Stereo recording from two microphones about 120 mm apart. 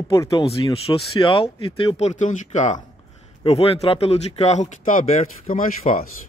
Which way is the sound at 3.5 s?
55° left (ahead or behind).